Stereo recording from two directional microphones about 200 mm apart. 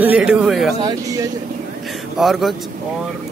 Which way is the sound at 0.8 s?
15° right (ahead or behind).